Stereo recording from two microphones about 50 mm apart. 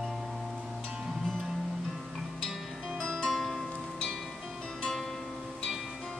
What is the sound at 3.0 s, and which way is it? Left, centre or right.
Music, centre.